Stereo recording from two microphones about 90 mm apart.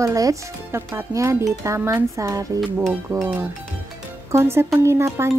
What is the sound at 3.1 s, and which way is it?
Speech, 20° right (ahead or behind).